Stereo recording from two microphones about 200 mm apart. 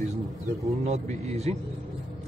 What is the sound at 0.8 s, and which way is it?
Speech, 35° right (ahead or behind).